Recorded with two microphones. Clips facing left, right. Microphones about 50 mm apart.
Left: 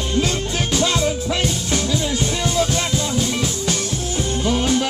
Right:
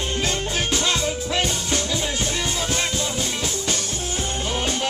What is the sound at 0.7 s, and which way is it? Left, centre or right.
Music, centre.